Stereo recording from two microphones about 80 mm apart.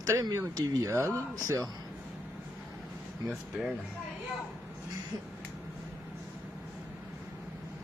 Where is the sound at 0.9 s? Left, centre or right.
Right.